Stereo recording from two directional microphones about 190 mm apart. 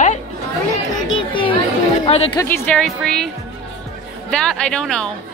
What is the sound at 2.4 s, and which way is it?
Speech, 10° left (ahead or behind).